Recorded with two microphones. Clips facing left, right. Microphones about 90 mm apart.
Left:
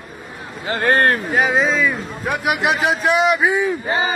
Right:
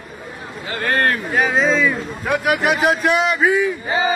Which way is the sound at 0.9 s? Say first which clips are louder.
Right 1 dB; 20° left (ahead or behind).